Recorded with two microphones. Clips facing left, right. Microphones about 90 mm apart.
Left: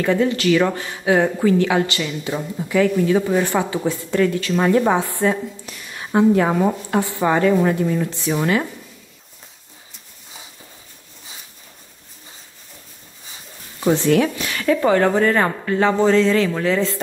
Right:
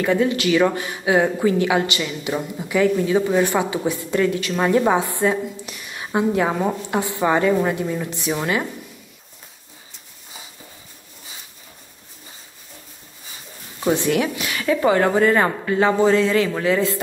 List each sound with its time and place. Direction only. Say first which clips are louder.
0.0 s a woman's voice: left 1 dB; 15° right (ahead or behind)
13.9 s a woman's voice: left 5 dB; 15° right (ahead or behind)